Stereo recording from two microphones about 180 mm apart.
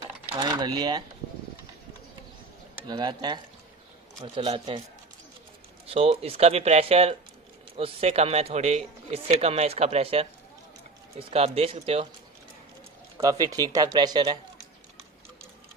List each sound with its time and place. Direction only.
0.4 s speech: 20° right (ahead or behind)
2.9 s speech: 25° right (ahead or behind)
4.4 s speech: 35° right (ahead or behind)
5.9 s speech: 35° right (ahead or behind)
13.2 s speech: 20° right (ahead or behind)